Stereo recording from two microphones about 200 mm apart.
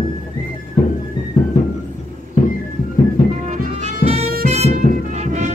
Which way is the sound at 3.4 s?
35° right (ahead or behind).